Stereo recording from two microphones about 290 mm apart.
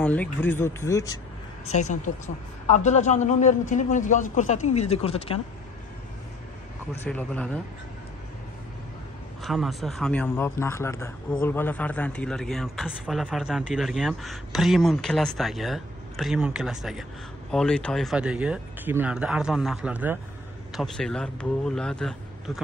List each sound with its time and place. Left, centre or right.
0.0 s speech: centre
1.7 s a woman's voice: left
7.1 s speech: centre
9.4 s speech: centre